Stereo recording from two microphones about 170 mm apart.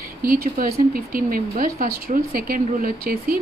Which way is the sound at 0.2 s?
55° right (ahead or behind).